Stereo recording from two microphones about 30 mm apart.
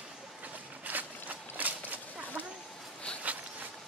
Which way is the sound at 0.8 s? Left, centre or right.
Right.